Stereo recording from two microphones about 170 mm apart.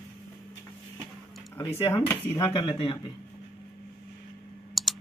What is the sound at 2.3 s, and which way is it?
Speech, 25° left (ahead or behind).